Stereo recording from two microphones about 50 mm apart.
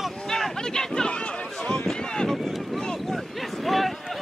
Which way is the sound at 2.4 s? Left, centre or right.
Centre.